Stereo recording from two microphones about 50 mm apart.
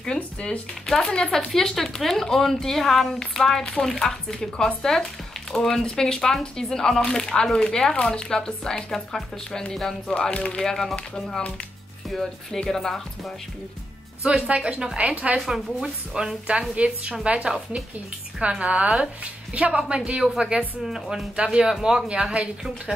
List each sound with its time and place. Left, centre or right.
0.0 s speech: centre
10.1 s speech: centre
14.5 s speech: right
15.3 s speech: centre
16.7 s speech: right
20.8 s speech: centre